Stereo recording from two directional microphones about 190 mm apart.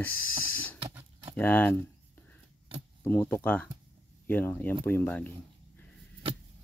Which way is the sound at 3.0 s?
10° left (ahead or behind).